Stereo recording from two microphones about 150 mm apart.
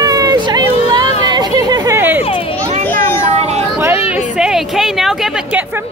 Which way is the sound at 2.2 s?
40° left (ahead or behind).